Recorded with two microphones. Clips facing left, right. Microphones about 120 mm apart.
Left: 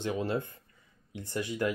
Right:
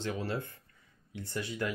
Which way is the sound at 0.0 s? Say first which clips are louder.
Left 4 dB; 20° left (ahead or behind).